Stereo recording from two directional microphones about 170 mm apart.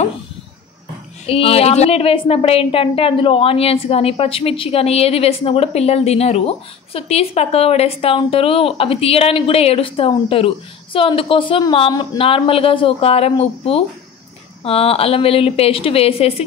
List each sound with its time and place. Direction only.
1.2 s a woman's voice: 35° left (ahead or behind)
11.9 s speech: 20° left (ahead or behind)
12.2 s a woman's voice: 35° left (ahead or behind)